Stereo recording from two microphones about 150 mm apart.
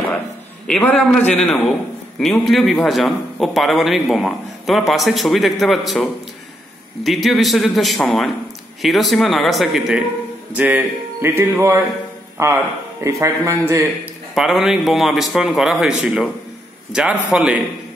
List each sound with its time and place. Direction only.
0.7 s a man's voice: 5° left (ahead or behind); by 13.8 s 20° right (ahead or behind)
14.3 s a man's voice: centre (ahead or behind)